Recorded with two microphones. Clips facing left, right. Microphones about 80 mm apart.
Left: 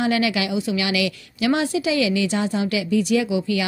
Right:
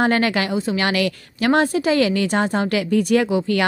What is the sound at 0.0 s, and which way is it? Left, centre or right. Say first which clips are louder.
A woman's voice: right 3 dB; right.